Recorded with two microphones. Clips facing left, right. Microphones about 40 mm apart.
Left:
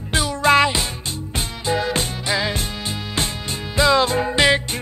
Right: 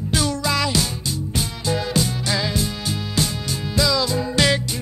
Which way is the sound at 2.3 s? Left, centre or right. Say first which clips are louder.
Left 2 dB; left.